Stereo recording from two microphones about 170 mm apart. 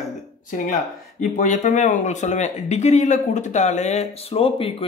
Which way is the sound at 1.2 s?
50° left (ahead or behind).